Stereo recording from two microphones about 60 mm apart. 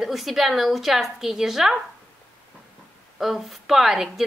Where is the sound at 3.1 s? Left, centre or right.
Centre.